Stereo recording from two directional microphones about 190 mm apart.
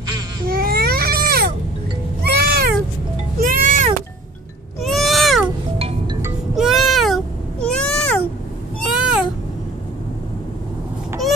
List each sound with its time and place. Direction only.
0.5 s baby cry: 50° right (ahead or behind)
2.2 s cat: 55° right (ahead or behind)
3.3 s music: 45° right (ahead or behind)
4.8 s a sound: centre (ahead or behind)
5.8 s music: 30° right (ahead or behind)
6.5 s cat: centre (ahead or behind)